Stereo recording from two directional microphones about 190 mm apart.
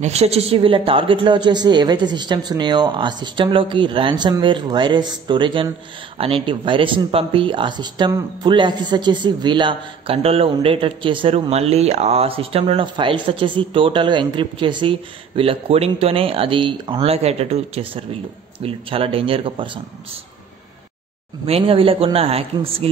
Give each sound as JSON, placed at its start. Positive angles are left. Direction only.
{"t": 0.0, "sound": "speech", "side_deg": -35}
{"t": 21.5, "sound": "a man's voice", "side_deg": -30}